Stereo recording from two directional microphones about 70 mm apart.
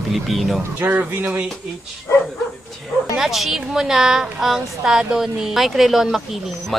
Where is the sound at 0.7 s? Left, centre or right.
Right.